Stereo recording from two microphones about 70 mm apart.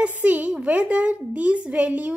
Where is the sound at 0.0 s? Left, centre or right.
Right.